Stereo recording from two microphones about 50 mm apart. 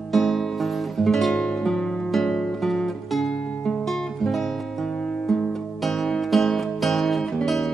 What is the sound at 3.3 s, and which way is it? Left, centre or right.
Music, centre.